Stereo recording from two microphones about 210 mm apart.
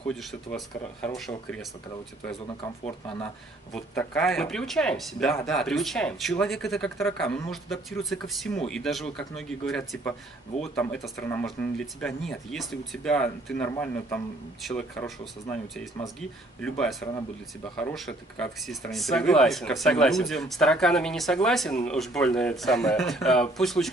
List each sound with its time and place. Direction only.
0.0 s speech: centre (ahead or behind)
2.4 s speech: 25° left (ahead or behind)
3.7 s speech: 5° left (ahead or behind)
10.5 s speech: 30° left (ahead or behind)
10.8 s speech: 5° left (ahead or behind)
16.2 s speech: 5° left (ahead or behind)